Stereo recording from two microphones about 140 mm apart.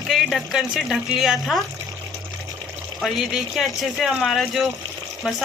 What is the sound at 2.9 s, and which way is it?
A woman's voice, centre (ahead or behind).